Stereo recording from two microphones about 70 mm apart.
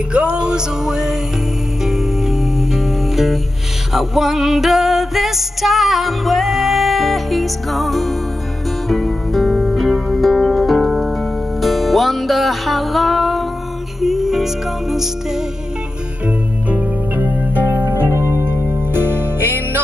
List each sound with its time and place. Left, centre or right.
0.1 s music: centre
16.3 s music: right